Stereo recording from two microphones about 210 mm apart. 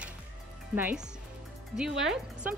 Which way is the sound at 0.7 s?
10° right (ahead or behind).